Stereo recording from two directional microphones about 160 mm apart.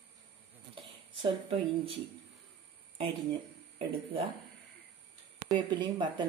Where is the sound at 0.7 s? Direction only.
35° right (ahead or behind).